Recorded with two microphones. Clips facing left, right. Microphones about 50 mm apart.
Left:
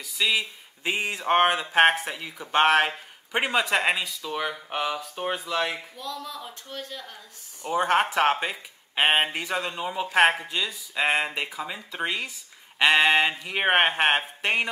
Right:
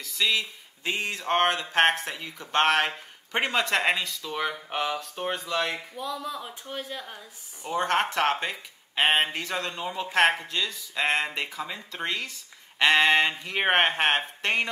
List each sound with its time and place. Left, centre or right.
0.0 s speech: centre
5.9 s speech: centre
7.7 s speech: centre